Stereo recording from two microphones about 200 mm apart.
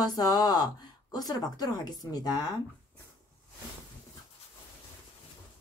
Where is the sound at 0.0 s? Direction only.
20° left (ahead or behind).